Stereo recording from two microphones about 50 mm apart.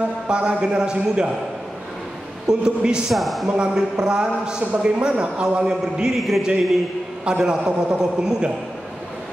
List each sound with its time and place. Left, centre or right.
0.3 s a man's voice: centre
2.4 s a man's voice: centre
3.1 s speech: centre
3.4 s a man's voice: centre
6.1 s speech: centre
7.2 s a man's voice: centre